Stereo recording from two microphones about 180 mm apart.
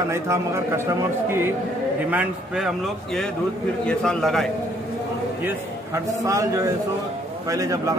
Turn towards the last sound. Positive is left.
turn(degrees=-20)  # may be behind; listen again after turning